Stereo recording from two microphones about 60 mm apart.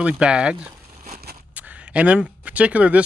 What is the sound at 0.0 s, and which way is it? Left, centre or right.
Speech, centre.